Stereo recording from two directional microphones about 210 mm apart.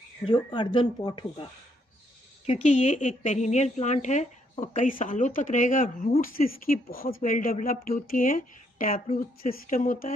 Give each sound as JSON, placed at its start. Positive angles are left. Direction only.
{"t": 0.2, "sound": "a woman's voice", "side_deg": 25}